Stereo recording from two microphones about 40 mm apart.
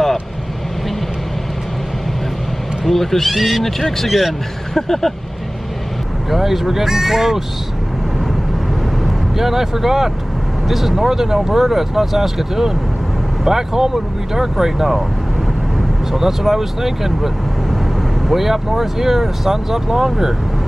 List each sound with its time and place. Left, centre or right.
2.8 s speech: centre
4.7 s speech: centre
6.3 s speech: centre
9.0 s speech: centre
16.1 s speech: centre